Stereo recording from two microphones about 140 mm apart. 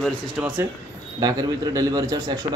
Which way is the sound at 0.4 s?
10° right (ahead or behind).